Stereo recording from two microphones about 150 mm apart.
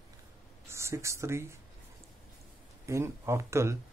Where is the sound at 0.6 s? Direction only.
20° right (ahead or behind).